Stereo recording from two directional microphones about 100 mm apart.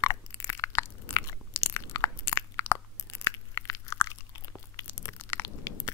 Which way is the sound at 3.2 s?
30° left (ahead or behind).